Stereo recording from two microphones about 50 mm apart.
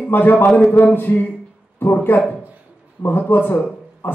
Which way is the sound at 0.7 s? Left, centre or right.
Left.